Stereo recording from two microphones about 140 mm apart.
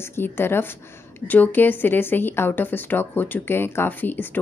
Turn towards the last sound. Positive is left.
turn(degrees=15)  # may be behind; listen again after turning